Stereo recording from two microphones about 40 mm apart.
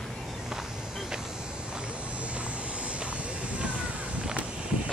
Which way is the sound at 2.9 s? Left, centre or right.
Right.